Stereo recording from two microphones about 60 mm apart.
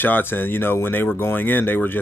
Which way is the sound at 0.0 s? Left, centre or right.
Left.